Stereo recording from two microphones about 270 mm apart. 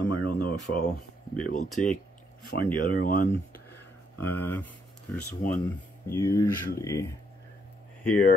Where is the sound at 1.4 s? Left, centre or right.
Left.